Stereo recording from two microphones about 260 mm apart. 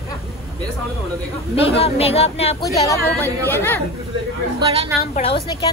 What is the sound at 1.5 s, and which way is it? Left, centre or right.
Speech, left.